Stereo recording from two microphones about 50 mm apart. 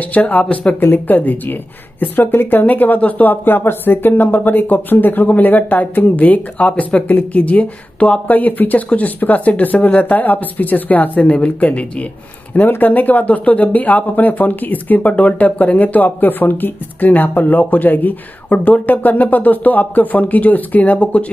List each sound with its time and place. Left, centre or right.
0.0 s speech: left
0.7 s speech: left
12.5 s speech: left